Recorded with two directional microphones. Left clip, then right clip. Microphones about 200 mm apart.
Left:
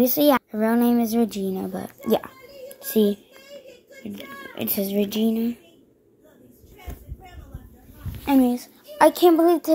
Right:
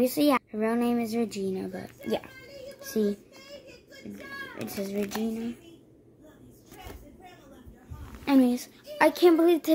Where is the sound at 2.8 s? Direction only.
25° left (ahead or behind).